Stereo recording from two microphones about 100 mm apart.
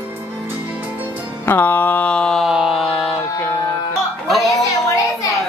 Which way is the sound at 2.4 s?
5° right (ahead or behind).